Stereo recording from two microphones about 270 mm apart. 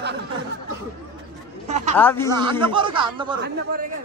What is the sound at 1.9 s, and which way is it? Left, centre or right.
Speech, centre.